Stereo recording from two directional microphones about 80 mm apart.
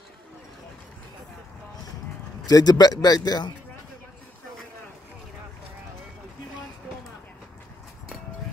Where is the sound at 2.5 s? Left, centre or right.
Left.